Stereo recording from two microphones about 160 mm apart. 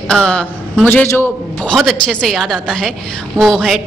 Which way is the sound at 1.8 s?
Centre (ahead or behind).